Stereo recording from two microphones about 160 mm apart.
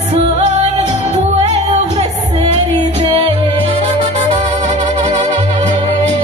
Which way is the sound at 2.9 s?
35° right (ahead or behind).